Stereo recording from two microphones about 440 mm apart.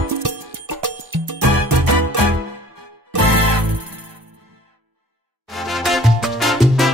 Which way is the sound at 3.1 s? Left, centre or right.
Right.